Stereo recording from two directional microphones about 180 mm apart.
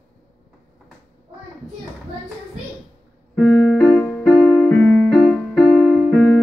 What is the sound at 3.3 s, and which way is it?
Music, 10° left (ahead or behind).